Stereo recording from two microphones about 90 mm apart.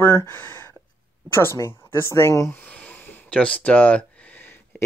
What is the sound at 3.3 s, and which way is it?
Speech, 10° left (ahead or behind).